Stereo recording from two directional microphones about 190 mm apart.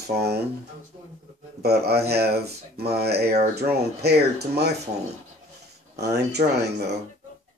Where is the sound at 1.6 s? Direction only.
60° right (ahead or behind).